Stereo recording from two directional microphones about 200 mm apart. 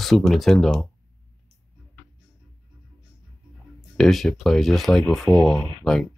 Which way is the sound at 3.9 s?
Centre (ahead or behind).